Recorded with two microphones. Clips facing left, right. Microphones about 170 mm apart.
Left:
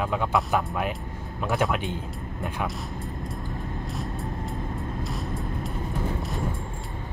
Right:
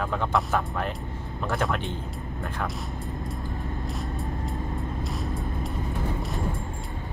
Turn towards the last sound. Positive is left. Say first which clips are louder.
# even
turn(degrees=0)  # may be behind; listen again after turning